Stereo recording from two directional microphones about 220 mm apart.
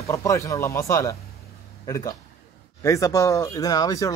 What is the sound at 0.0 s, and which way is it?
Speech, 15° left (ahead or behind).